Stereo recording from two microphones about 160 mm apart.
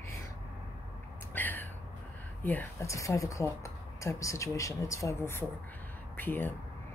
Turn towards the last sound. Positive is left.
turn(degrees=10)  # may be behind; listen again after turning